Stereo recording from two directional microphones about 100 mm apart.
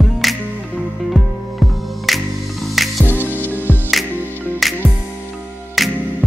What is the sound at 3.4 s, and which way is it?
Music, 20° left (ahead or behind).